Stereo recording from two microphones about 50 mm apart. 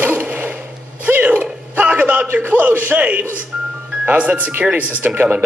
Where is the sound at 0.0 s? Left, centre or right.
Right.